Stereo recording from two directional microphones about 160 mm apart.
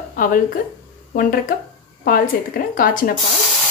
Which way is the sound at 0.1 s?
60° left (ahead or behind).